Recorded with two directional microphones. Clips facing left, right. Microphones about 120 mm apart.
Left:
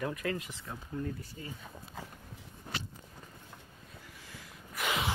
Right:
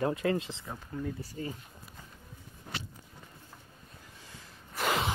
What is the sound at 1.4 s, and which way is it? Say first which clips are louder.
Speech: right 7 dB; 40° right (ahead or behind).